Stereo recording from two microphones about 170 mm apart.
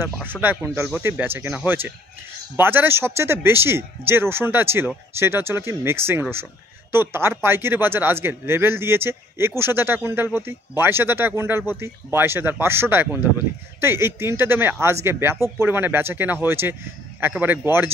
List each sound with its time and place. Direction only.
0.0 s a man's voice: 10° right (ahead or behind)